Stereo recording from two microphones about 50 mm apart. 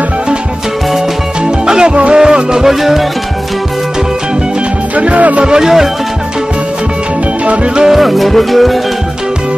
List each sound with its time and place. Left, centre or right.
0.9 s music: centre
4.9 s music: right
5.4 s music: centre
7.4 s music: centre
7.9 s music: centre